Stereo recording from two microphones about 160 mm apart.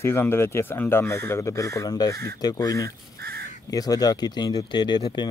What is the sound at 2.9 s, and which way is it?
Crow, 80° right.